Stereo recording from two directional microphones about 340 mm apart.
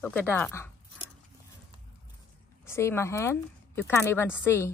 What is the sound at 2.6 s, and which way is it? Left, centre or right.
Speech, centre.